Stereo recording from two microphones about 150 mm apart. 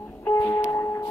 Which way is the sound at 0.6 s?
20° left (ahead or behind).